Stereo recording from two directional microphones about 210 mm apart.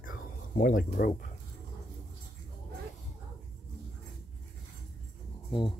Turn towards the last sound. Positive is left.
turn(degrees=20)  # may be behind; listen again after turning